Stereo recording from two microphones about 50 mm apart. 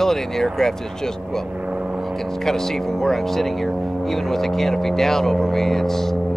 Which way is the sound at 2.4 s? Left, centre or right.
Centre.